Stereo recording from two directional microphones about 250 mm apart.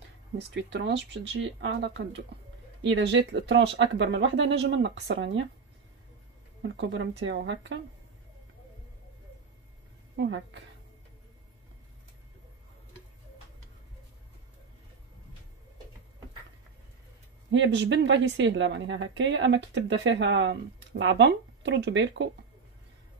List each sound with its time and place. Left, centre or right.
0.6 s a woman's voice: right
6.7 s a woman's voice: right
10.1 s a woman's voice: right
17.5 s a woman's voice: right